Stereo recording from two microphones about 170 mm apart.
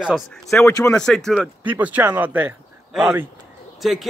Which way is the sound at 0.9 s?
5° left (ahead or behind).